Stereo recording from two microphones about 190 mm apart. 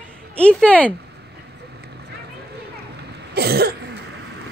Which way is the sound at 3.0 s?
55° right (ahead or behind).